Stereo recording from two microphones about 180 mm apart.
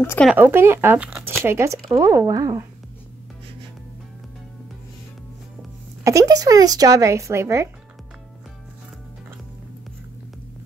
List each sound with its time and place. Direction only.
0.0 s speech: 10° left (ahead or behind)
0.3 s speech: 10° right (ahead or behind)
6.0 s speech: 20° right (ahead or behind)